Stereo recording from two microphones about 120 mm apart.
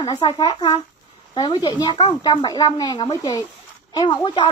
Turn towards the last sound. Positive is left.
turn(degrees=40)  # may be behind; listen again after turning